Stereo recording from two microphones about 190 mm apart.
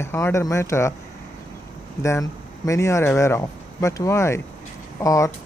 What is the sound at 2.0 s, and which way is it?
Speech, 15° left (ahead or behind).